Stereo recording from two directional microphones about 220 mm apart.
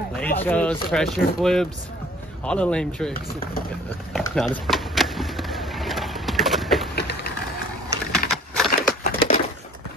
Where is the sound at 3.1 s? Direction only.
45° left (ahead or behind).